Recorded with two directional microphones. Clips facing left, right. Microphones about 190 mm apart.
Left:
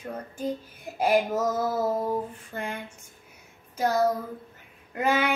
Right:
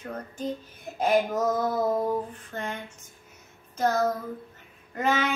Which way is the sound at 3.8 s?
10° left (ahead or behind).